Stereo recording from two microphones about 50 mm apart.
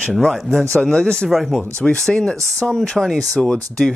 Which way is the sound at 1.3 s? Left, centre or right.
Centre.